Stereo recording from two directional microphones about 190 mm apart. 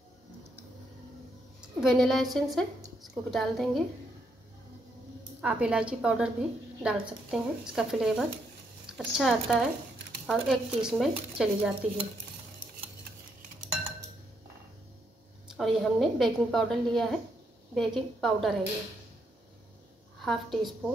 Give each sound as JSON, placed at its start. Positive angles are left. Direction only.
{"t": 1.8, "sound": "a woman's voice", "side_deg": 0}
{"t": 5.4, "sound": "a woman's voice", "side_deg": -5}
{"t": 15.5, "sound": "a woman's voice", "side_deg": 0}
{"t": 20.2, "sound": "a woman's voice", "side_deg": 0}